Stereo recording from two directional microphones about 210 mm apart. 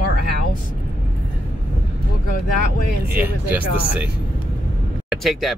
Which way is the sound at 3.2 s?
10° right (ahead or behind).